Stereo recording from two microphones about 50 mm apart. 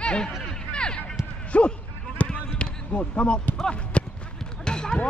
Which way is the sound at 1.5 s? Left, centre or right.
Left.